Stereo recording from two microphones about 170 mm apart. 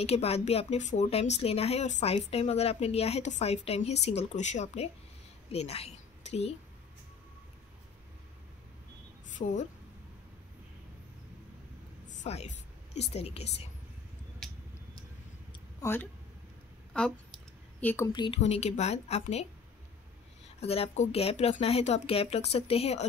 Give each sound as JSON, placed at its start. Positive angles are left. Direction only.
{"t": 0.0, "sound": "a woman's voice", "side_deg": 35}
{"t": 9.3, "sound": "a woman's voice", "side_deg": 45}
{"t": 12.1, "sound": "a sound", "side_deg": 40}
{"t": 13.1, "sound": "a woman's voice", "side_deg": 35}
{"t": 15.8, "sound": "speech", "side_deg": 15}
{"t": 16.9, "sound": "a sound", "side_deg": 5}
{"t": 18.4, "sound": "a woman's voice", "side_deg": 40}
{"t": 20.6, "sound": "a woman's voice", "side_deg": 35}